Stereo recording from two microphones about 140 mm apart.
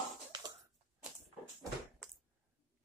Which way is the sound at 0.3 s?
30° right (ahead or behind).